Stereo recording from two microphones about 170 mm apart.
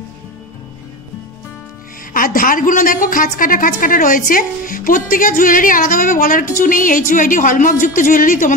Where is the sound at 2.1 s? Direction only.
55° left (ahead or behind).